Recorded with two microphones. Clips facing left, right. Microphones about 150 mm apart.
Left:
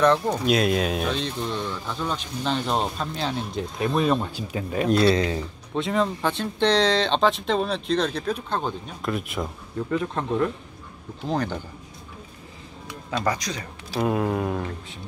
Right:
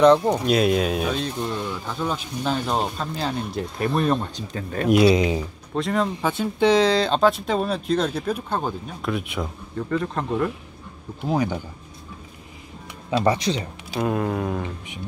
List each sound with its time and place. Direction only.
0.0 s speech: 20° right (ahead or behind)
0.4 s speech: centre (ahead or behind)
4.8 s speech: 15° right (ahead or behind)
5.8 s speech: centre (ahead or behind)
13.1 s speech: 25° right (ahead or behind)
13.9 s speech: centre (ahead or behind)